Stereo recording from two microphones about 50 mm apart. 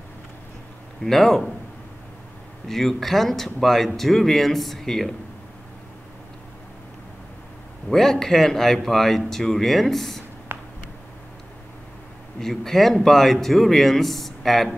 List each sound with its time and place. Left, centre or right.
1.0 s speech: centre
2.7 s speech: centre
7.9 s speech: centre
10.5 s a sound: right
12.4 s speech: centre